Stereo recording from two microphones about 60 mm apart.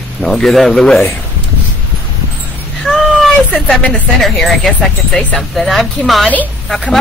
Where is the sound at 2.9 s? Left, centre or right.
Centre.